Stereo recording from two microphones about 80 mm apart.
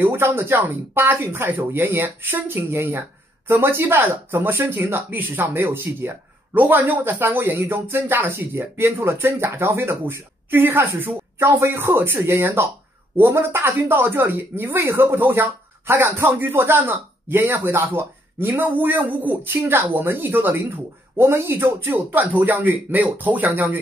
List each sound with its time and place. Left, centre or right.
0.0 s speech: right